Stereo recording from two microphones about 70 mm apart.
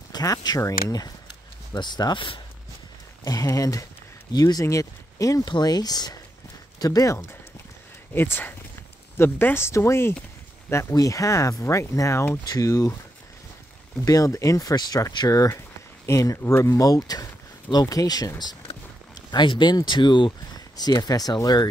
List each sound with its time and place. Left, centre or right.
0.1 s speech: left
0.6 s speech: left
1.7 s speech: left
3.3 s speech: left
5.4 s speech: left
6.8 s speech: left
8.1 s speech: left
11.0 s speech: left
12.4 s speech: left
14.0 s speech: left
16.8 s speech: left
19.3 s speech: left